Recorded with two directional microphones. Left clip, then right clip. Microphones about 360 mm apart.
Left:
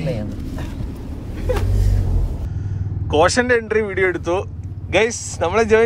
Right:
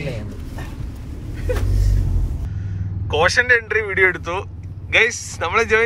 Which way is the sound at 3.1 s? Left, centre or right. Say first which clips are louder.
Even; centre.